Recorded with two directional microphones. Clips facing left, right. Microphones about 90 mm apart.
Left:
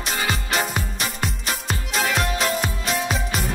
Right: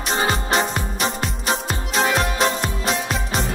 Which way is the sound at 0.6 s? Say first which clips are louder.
Right 3 dB; 5° left (ahead or behind).